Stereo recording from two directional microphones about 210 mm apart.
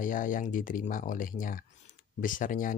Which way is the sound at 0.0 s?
40° left (ahead or behind).